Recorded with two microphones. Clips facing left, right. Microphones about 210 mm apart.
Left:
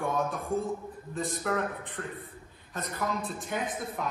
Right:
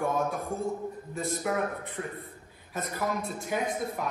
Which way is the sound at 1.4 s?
10° right (ahead or behind).